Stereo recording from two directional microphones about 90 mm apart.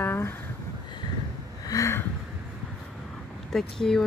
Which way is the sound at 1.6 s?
40° left (ahead or behind).